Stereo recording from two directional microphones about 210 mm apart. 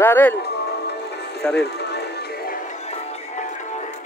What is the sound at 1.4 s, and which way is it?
Speech, 5° left (ahead or behind).